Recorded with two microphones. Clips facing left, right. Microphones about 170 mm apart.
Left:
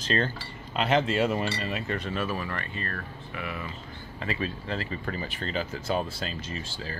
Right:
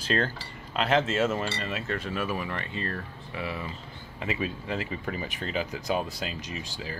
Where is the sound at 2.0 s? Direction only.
10° right (ahead or behind); by 3.7 s 25° right (ahead or behind).